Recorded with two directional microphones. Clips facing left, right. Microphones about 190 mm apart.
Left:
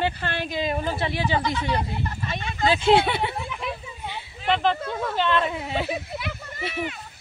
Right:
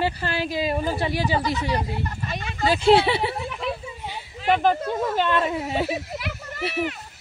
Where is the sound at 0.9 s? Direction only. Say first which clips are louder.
Right 2 dB; 40° right (ahead or behind).